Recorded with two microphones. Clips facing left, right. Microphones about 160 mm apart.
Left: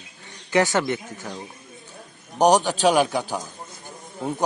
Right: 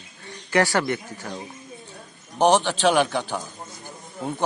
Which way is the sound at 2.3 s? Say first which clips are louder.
Left 1 dB; 40° left (ahead or behind).